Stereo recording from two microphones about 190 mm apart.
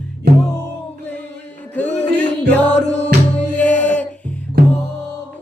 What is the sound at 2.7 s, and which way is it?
Music, 35° left (ahead or behind).